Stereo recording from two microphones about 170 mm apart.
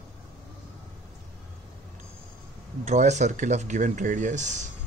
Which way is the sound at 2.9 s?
45° right (ahead or behind).